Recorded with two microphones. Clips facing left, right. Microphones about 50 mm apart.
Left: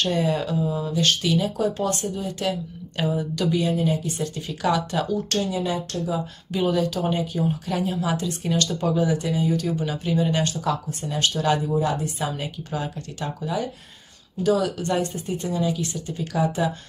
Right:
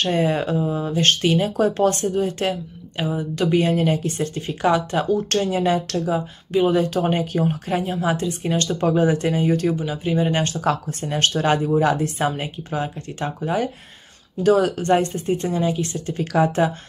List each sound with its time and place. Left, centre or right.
0.0 s speech: right
3.0 s speech: right
3.3 s speech: right
4.2 s speech: right
6.5 s speech: right
6.8 s speech: right
7.6 s speech: right
10.0 s speech: right
11.8 s speech: right
12.4 s speech: right
16.2 s speech: right